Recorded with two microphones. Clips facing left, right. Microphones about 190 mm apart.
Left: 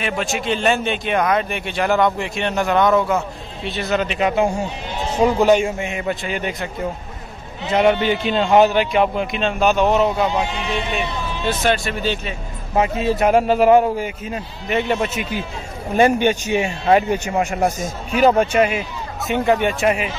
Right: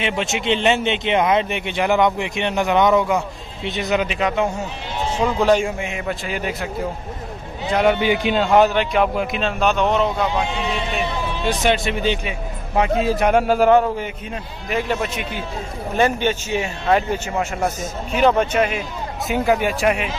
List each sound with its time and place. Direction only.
0.0 s a man's voice: 20° right (ahead or behind)
4.1 s a man's voice: 5° left (ahead or behind)
7.7 s a man's voice: centre (ahead or behind)
8.0 s speech: 10° right (ahead or behind)
8.5 s a man's voice: centre (ahead or behind)
11.4 s speech: 20° right (ahead or behind)
12.7 s a man's voice: centre (ahead or behind)
19.3 s a man's voice: 5° right (ahead or behind)